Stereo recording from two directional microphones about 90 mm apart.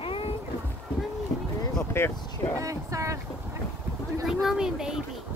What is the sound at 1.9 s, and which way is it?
Speech, 30° left (ahead or behind).